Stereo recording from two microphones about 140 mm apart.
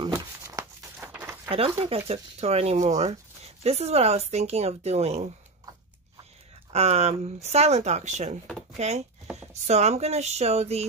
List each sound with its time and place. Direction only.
0.1 s a sound: 20° right (ahead or behind)
2.0 s speech: 50° right (ahead or behind)
6.7 s speech: 50° right (ahead or behind)